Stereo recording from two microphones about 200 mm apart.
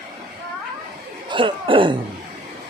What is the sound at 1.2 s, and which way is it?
Cough, 25° right (ahead or behind).